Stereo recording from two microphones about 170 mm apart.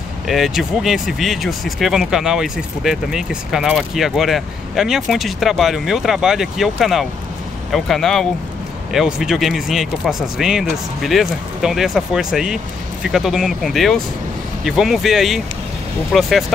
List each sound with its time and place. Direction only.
0.3 s speech: centre (ahead or behind)